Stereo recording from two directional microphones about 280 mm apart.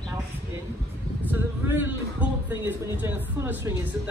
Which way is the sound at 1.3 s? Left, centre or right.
Centre.